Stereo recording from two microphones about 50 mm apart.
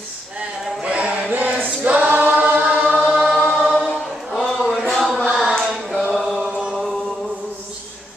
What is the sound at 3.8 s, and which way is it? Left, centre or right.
Choir, centre.